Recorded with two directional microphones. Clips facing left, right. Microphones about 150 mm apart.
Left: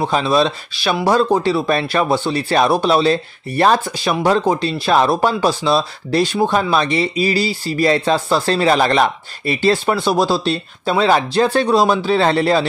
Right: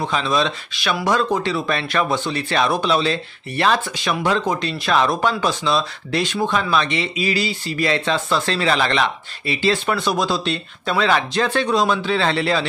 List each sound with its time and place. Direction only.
0.0 s speech: 35° left (ahead or behind)
9.8 s speech: 30° left (ahead or behind)